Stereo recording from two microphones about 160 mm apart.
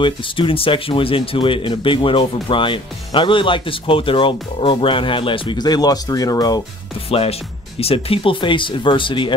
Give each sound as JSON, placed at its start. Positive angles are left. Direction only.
{"t": 0.0, "sound": "speech", "side_deg": 35}
{"t": 7.1, "sound": "speech", "side_deg": 35}